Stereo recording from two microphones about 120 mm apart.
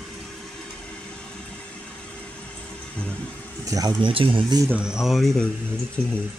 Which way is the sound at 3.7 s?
30° right (ahead or behind).